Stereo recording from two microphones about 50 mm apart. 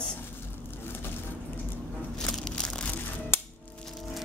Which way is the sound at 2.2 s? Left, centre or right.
Centre.